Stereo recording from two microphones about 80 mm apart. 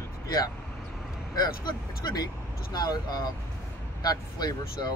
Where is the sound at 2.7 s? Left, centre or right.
Left.